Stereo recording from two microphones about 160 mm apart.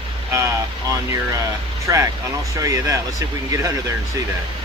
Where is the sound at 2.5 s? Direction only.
20° right (ahead or behind).